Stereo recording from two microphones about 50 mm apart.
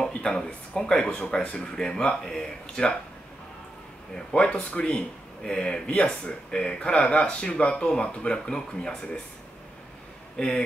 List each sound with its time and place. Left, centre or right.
0.1 s a sound: left
0.7 s speech: centre
4.1 s a man's voice: centre